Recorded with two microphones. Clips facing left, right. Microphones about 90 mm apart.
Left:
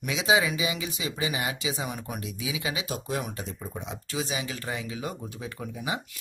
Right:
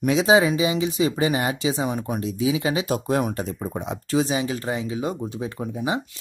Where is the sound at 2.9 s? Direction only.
50° right (ahead or behind).